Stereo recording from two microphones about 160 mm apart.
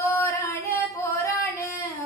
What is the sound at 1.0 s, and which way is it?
Singing, 15° left (ahead or behind).